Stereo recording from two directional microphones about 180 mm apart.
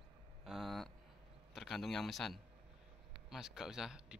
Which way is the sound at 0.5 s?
Centre (ahead or behind).